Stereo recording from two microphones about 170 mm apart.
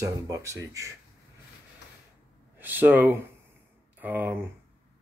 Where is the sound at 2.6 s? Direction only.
10° right (ahead or behind).